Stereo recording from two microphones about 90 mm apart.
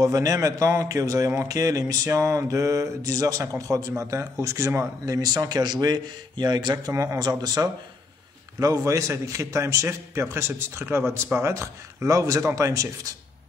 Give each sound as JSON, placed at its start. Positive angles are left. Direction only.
{"t": 0.0, "sound": "a man's voice", "side_deg": -40}
{"t": 6.9, "sound": "a man's voice", "side_deg": -35}
{"t": 7.2, "sound": "speech", "side_deg": -50}
{"t": 8.5, "sound": "a man's voice", "side_deg": -40}